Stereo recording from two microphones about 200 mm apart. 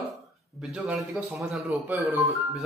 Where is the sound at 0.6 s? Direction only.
Centre (ahead or behind).